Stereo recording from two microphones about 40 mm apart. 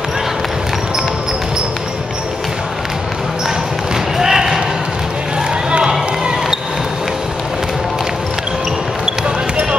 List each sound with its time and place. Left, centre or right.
4.2 s basketball bounce: centre
5.7 s basketball bounce: right